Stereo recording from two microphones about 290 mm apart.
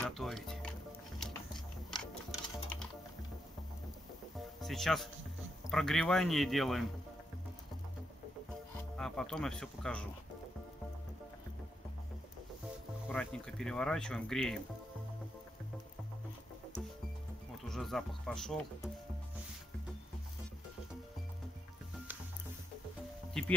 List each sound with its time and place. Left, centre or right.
0.0 s music: centre
4.4 s music: centre
5.7 s speech: centre
8.9 s speech: centre
13.1 s speech: centre
17.6 s speech: centre